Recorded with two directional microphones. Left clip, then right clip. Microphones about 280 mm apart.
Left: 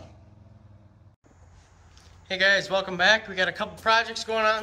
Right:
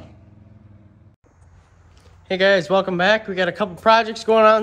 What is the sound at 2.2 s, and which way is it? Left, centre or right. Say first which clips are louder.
Speech: right 5 dB; centre.